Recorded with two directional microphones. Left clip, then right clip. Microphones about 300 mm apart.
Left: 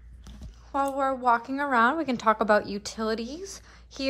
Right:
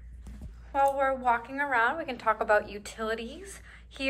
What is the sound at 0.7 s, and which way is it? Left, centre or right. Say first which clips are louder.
A woman's voice: right 1 dB; centre.